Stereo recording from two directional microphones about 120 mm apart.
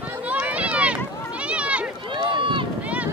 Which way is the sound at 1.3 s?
10° right (ahead or behind).